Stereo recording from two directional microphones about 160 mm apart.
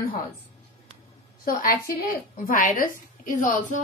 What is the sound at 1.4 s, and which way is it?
A woman's voice, 65° left (ahead or behind).